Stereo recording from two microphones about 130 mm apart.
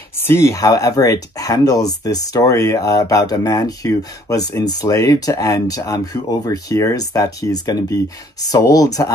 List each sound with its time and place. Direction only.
0.2 s speech: 20° left (ahead or behind)